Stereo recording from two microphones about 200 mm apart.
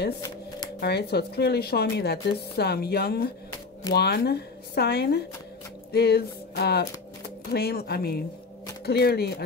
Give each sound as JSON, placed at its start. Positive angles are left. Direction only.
{"t": 0.7, "sound": "speech", "side_deg": 55}
{"t": 5.9, "sound": "a sound", "side_deg": 55}
{"t": 7.5, "sound": "speech", "side_deg": 50}